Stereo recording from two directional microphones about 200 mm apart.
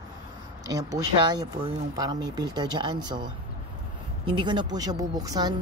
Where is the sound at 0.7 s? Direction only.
20° right (ahead or behind).